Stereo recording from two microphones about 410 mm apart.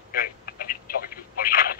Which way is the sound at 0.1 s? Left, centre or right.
Left.